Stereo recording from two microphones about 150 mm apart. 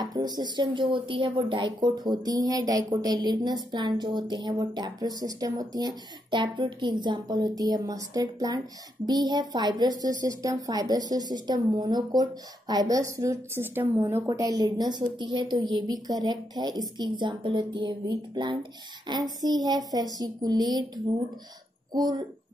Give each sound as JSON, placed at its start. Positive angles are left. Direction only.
{"t": 0.0, "sound": "speech", "side_deg": -30}